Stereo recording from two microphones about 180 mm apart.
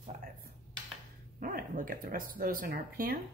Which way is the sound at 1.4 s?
50° right (ahead or behind).